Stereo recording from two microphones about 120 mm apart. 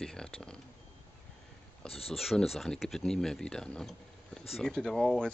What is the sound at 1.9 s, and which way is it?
Speech, 55° left (ahead or behind).